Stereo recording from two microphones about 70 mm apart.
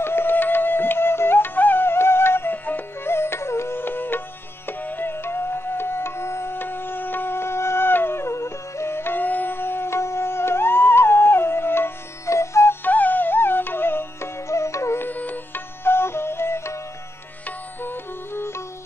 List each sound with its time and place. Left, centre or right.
0.0 s music: left
12.8 s music: left
15.0 s music: left